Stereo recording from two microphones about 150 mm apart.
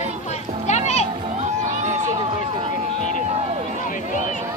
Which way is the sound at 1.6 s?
55° right (ahead or behind).